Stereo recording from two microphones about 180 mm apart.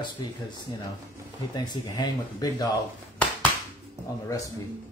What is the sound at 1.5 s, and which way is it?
Speech, 25° left (ahead or behind).